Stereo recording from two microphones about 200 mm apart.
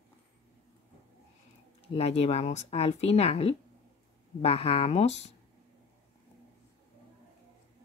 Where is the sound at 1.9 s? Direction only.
30° left (ahead or behind).